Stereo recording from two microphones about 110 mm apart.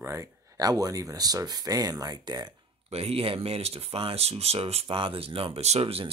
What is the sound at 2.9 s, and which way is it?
Speech, 65° right (ahead or behind).